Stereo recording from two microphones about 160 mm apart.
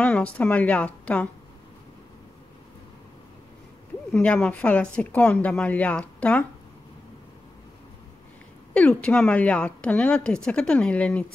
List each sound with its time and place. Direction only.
0.0 s a woman's voice: 10° left (ahead or behind)
4.1 s a woman's voice: 5° left (ahead or behind)
8.7 s a woman's voice: 5° left (ahead or behind)